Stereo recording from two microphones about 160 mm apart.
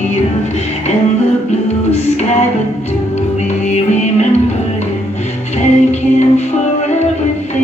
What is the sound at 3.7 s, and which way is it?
Music, 45° left (ahead or behind).